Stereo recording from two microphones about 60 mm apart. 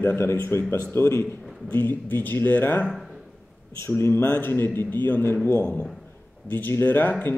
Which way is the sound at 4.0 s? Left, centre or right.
Left.